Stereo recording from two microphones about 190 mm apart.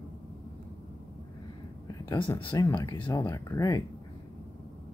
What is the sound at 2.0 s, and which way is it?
Speech, 25° left (ahead or behind).